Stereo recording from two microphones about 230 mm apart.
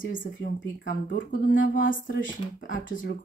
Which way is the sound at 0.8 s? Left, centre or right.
Left.